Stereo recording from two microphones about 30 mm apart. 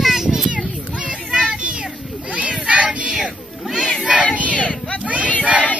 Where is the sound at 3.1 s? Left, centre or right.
Right.